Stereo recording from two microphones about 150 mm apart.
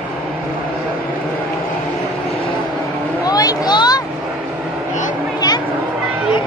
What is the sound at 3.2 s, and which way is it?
Vehicle, 25° left (ahead or behind).